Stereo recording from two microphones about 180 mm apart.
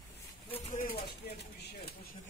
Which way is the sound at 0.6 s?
45° left (ahead or behind).